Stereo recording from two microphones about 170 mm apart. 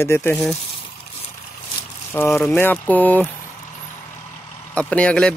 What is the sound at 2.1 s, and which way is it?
Speech, 10° left (ahead or behind).